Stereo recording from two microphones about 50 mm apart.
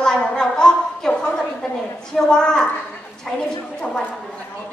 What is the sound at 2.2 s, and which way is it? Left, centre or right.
Speech, centre.